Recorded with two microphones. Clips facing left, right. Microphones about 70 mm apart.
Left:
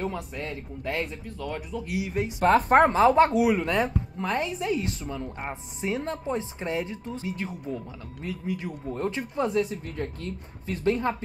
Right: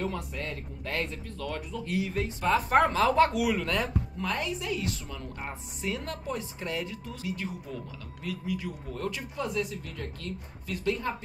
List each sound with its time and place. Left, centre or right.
0.0 s speech: centre
2.4 s speech: left
2.9 s a woman's voice: left